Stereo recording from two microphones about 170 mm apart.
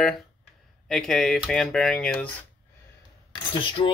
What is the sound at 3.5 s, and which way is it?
Cutlery, 30° left (ahead or behind).